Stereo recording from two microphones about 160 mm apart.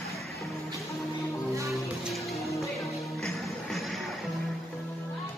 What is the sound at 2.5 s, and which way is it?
Music, centre (ahead or behind).